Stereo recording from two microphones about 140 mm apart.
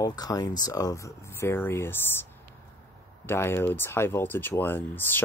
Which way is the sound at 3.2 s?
15° left (ahead or behind).